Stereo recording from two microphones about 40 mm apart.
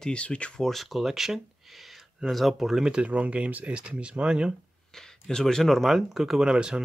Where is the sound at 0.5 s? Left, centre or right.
Centre.